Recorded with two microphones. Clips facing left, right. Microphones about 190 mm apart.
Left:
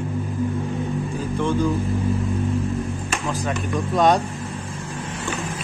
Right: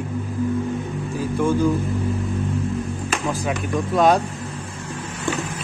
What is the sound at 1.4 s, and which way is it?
Speech, 15° right (ahead or behind).